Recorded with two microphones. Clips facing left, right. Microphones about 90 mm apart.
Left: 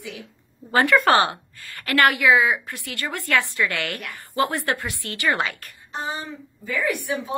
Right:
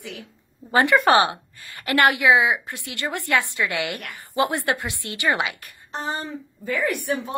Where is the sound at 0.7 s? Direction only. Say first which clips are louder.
Even; 20° right (ahead or behind).